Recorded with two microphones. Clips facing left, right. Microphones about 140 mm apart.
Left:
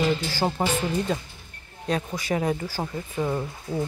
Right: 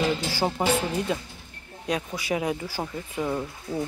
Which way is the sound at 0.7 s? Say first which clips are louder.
Even; 10° right (ahead or behind).